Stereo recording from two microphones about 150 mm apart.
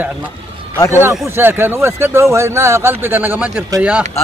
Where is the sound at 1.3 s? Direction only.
15° right (ahead or behind).